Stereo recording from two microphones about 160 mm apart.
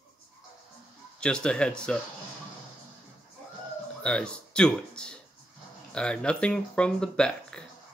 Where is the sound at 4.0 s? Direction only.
5° left (ahead or behind).